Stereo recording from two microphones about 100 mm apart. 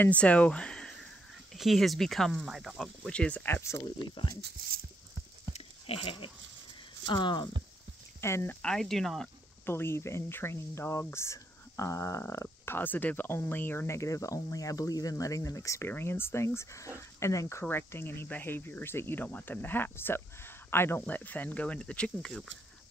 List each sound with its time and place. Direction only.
0.0 s speech: 15° left (ahead or behind)
3.4 s speech: 20° left (ahead or behind)
3.8 s speech: 55° left (ahead or behind)
5.5 s goat: 70° left (ahead or behind)
7.1 s speech: 50° left (ahead or behind)
8.2 s speech: 25° left (ahead or behind)
8.6 s speech: 5° left (ahead or behind)
9.7 s speech: 25° left (ahead or behind); by 22.5 s 5° left (ahead or behind)